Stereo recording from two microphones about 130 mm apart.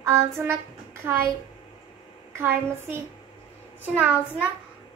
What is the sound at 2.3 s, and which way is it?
A woman's voice, 15° right (ahead or behind).